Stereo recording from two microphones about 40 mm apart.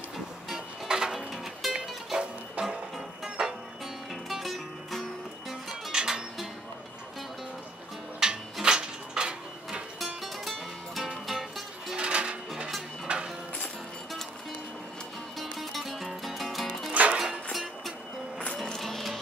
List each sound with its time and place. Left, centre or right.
0.8 s music: centre
2.6 s music: right
3.4 s music: centre
4.1 s music: centre
5.5 s music: centre
8.2 s music: centre
8.7 s a sound: centre
9.9 s music: centre
11.9 s music: right
13.1 s clip-clop: right
15.3 s music: centre
16.9 s music: right
17.5 s music: centre